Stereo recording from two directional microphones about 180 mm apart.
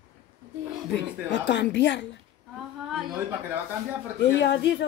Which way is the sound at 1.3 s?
80° left.